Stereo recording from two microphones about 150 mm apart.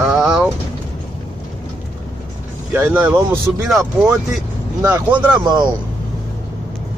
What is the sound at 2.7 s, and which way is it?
Speech, 10° right (ahead or behind).